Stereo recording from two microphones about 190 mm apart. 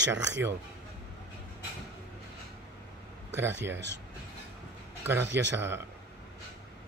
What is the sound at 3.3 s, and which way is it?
Speech, 70° right (ahead or behind).